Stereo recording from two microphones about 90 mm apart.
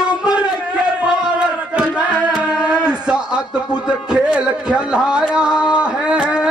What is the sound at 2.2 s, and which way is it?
Music, 10° right (ahead or behind).